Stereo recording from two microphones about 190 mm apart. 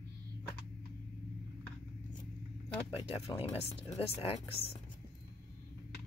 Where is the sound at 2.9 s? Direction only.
30° left (ahead or behind).